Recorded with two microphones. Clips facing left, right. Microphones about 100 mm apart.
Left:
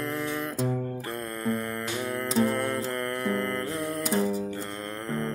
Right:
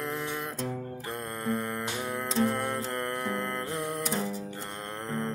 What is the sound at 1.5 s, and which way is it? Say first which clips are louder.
Music: even; 15° right (ahead or behind).